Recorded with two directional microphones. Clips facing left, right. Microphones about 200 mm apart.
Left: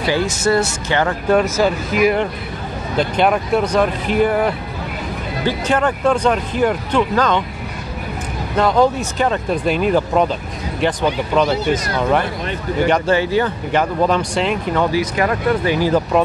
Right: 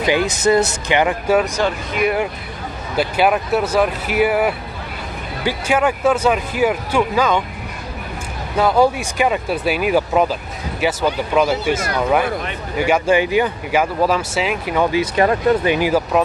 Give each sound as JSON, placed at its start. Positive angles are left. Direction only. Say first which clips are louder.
{"t": 0.0, "sound": "speech", "louder": "right 1 dB", "side_deg": -15}
{"t": 1.3, "sound": "speech", "louder": "left 4 dB", "side_deg": 0}
{"t": 8.5, "sound": "speech", "louder": "even", "side_deg": -10}
{"t": 14.9, "sound": "speech", "louder": "right 2 dB", "side_deg": -25}